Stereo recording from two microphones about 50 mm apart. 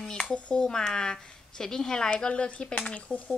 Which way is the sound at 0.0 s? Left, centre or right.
Centre.